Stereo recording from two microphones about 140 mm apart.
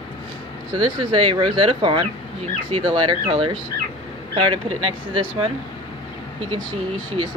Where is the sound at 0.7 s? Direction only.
35° right (ahead or behind).